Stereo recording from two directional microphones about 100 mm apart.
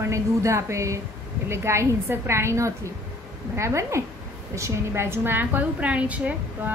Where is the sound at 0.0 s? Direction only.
30° right (ahead or behind).